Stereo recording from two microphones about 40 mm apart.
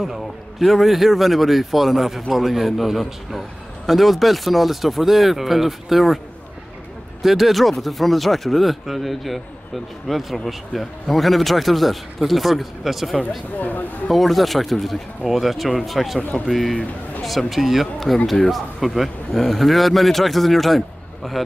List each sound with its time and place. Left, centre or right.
0.0 s speech: centre
7.2 s speech: centre
13.6 s speech: left
14.1 s speech: centre
16.2 s speech: left
16.4 s speech: centre